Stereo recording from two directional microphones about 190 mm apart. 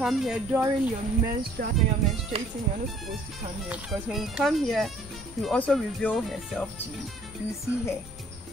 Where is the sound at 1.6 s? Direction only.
45° right (ahead or behind).